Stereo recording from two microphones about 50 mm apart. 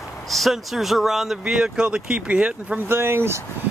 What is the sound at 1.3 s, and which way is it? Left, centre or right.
Speech, centre.